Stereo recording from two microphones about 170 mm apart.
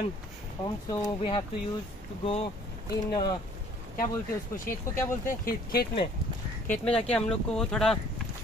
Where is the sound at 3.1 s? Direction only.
25° left (ahead or behind).